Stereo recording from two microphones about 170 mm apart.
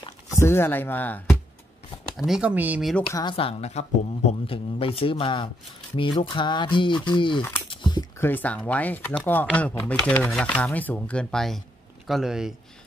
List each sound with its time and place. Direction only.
0.3 s speech: 15° left (ahead or behind)
2.1 s speech: centre (ahead or behind)
3.1 s speech: 20° left (ahead or behind)
3.3 s speech: 35° left (ahead or behind)
7.7 s biting: 25° left (ahead or behind)
8.3 s speech: 10° left (ahead or behind)